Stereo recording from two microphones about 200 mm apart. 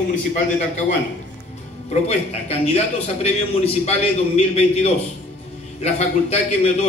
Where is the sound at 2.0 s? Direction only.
30° left (ahead or behind).